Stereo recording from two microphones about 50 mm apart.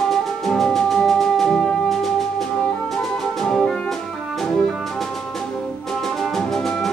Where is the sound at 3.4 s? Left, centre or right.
Centre.